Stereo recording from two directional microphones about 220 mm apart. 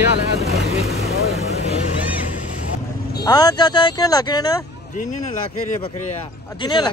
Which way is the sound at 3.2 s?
20° left (ahead or behind).